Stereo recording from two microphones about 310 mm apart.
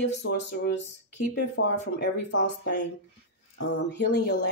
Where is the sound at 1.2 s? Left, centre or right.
Left.